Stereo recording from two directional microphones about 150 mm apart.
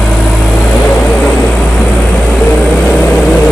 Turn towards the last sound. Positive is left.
turn(degrees=5)  # may be behind; listen again after turning